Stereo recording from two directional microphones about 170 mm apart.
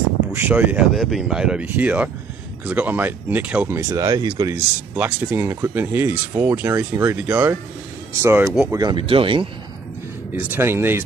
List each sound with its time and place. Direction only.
0.3 s speech: 10° right (ahead or behind)
4.9 s speech: 10° right (ahead or behind)
8.7 s speech: 25° right (ahead or behind)
10.3 s speech: 10° right (ahead or behind)